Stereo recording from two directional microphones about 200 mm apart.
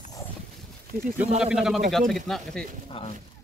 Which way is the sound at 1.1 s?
5° right (ahead or behind).